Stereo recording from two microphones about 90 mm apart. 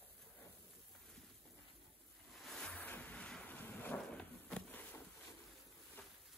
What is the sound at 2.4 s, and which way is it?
Waves, centre (ahead or behind).